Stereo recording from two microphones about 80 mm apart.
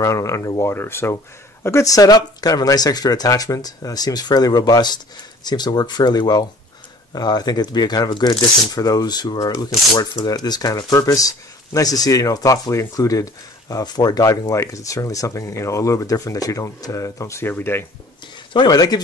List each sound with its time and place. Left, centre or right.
0.0 s speech: left
1.9 s speech: left
18.5 s speech: left